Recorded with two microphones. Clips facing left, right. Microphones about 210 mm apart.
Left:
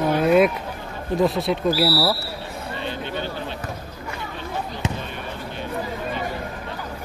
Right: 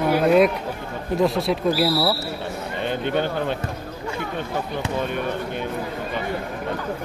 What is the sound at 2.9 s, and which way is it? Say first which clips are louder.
Speech: right 7 dB; 55° right (ahead or behind).